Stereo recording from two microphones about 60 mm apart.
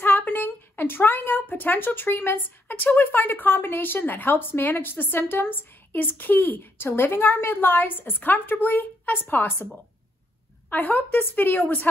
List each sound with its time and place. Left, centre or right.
0.0 s speech: left
10.7 s speech: left